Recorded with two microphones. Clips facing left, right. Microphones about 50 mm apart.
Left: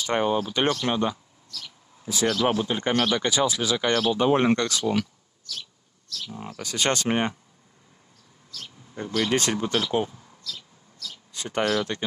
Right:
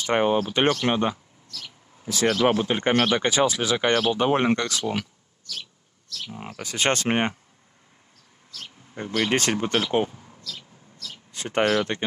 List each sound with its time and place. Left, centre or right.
0.0 s speech: right
6.1 s speech: right
8.5 s speech: centre
9.4 s bird: right; by 11.1 s centre
11.1 s a sound: right